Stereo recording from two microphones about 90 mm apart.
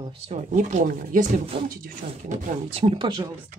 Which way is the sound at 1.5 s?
75° right (ahead or behind).